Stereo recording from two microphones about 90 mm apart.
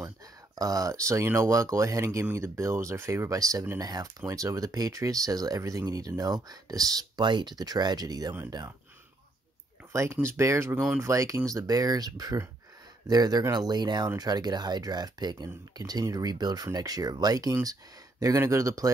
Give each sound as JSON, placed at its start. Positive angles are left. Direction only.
{"t": 0.0, "sound": "speech", "side_deg": -40}
{"t": 10.2, "sound": "speech", "side_deg": -30}